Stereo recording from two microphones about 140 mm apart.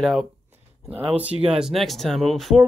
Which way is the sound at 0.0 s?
Centre (ahead or behind).